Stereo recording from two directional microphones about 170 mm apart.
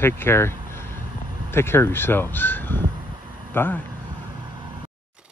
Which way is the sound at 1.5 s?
15° left (ahead or behind).